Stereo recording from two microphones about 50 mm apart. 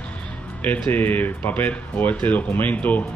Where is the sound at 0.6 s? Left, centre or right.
Left.